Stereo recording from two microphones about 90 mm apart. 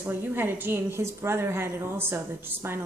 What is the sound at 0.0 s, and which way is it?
A woman's voice, 25° right (ahead or behind).